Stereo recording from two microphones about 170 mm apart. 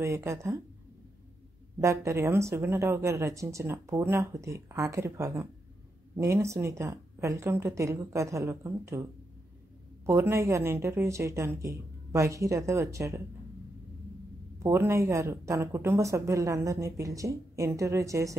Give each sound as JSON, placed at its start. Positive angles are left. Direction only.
{"t": 0.0, "sound": "speech", "side_deg": -15}
{"t": 1.8, "sound": "speech", "side_deg": -15}
{"t": 10.0, "sound": "speech", "side_deg": -15}
{"t": 14.6, "sound": "speech", "side_deg": -15}